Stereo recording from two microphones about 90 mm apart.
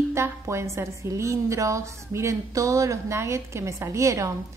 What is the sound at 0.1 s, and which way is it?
A woman's voice, 30° right (ahead or behind).